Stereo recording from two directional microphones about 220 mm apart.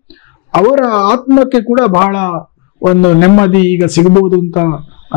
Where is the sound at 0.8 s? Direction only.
10° left (ahead or behind).